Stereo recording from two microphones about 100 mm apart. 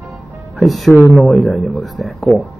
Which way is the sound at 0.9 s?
25° left (ahead or behind).